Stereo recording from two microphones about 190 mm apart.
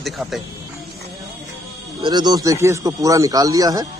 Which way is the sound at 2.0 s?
20° right (ahead or behind).